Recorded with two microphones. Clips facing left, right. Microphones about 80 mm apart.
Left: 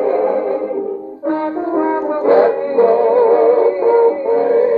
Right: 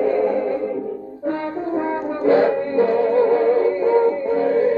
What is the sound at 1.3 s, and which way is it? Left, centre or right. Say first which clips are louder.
French horn: left 6 dB; left.